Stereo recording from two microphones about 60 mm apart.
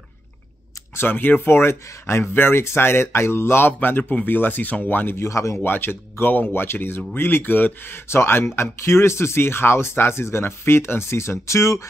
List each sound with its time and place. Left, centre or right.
0.9 s speech: left
5.6 s speech: left